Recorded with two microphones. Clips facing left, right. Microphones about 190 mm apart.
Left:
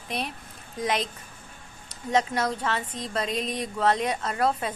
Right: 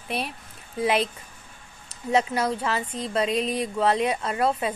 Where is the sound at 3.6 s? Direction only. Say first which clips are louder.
Left 1 dB; 5° right (ahead or behind).